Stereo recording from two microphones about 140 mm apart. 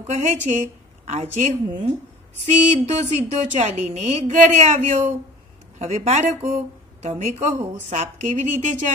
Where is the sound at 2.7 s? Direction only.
50° right (ahead or behind).